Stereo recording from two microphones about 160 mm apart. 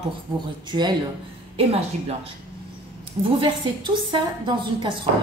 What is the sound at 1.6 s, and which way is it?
A woman's voice, 40° right (ahead or behind).